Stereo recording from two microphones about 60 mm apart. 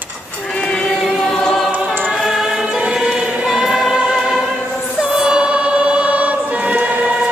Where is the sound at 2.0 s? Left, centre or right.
Centre; by 7.0 s right.